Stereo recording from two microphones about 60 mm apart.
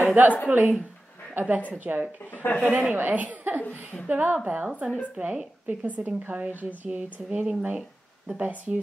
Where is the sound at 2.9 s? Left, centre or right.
Right.